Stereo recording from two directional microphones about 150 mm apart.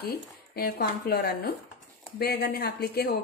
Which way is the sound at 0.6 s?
90° left.